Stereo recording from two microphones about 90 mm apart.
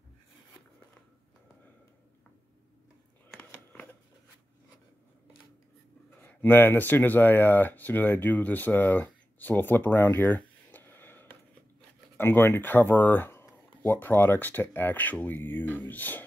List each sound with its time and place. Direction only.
6.2 s speech: 20° left (ahead or behind)